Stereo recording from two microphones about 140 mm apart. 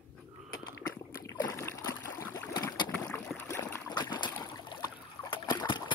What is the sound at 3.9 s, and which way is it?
Boat, 30° left (ahead or behind).